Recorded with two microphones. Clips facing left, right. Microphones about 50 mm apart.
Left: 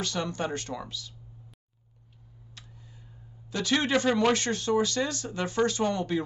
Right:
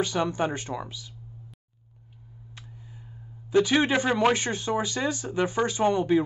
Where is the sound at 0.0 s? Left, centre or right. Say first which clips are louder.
Right 5 dB; centre.